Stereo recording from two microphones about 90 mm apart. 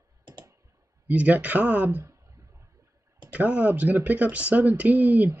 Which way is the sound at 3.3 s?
15° right (ahead or behind).